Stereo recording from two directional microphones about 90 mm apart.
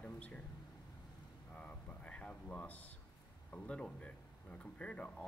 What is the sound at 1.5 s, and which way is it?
Speech, 15° left (ahead or behind).